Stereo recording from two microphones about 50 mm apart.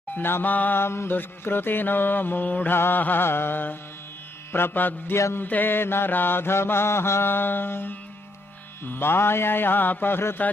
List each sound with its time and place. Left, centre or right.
0.1 s music: left
0.7 s mantra: left
1.1 s music: left
2.7 s mantra: left